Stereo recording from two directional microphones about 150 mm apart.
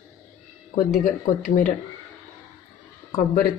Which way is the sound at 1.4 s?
60° left (ahead or behind).